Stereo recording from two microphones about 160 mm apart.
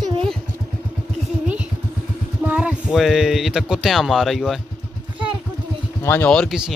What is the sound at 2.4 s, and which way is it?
Speech, 10° right (ahead or behind).